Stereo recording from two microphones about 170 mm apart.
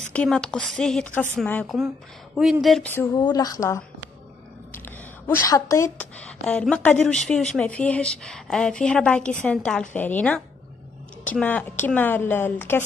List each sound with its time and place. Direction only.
0.1 s a woman's voice: 5° left (ahead or behind)
3.2 s a woman's voice: 25° left (ahead or behind)